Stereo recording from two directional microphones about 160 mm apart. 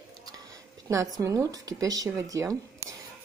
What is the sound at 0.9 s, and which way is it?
Speech, 20° right (ahead or behind).